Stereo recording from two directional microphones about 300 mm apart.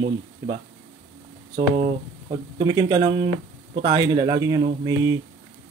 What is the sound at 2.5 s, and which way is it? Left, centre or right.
Speech, centre.